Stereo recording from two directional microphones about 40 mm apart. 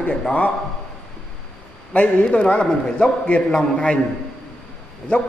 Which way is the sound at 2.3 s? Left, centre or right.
Left.